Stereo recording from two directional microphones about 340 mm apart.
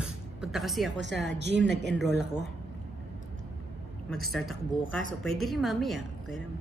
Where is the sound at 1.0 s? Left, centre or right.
Right.